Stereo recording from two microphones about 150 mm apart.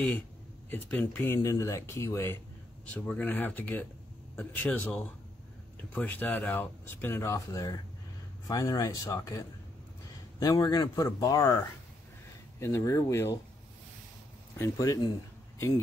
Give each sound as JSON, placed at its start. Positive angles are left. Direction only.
{"t": 0.7, "sound": "speech", "side_deg": 10}
{"t": 14.6, "sound": "speech", "side_deg": 20}